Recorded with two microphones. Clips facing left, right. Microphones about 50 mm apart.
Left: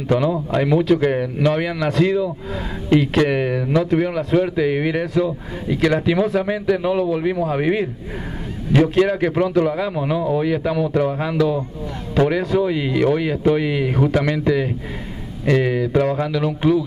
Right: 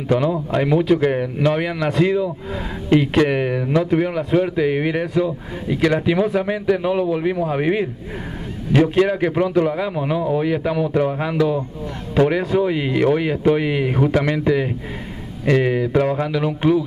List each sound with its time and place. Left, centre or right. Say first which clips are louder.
0.1 s a man's voice: even; centre